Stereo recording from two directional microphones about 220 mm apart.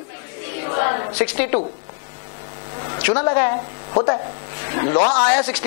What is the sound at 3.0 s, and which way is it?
A woman's voice, 10° left (ahead or behind).